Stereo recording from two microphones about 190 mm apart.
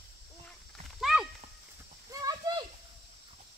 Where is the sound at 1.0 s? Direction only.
Centre (ahead or behind).